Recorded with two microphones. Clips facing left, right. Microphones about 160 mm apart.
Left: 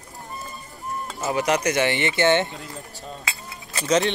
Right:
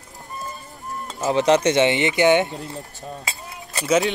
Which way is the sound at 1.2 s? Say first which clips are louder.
Right 5 dB; 25° right (ahead or behind).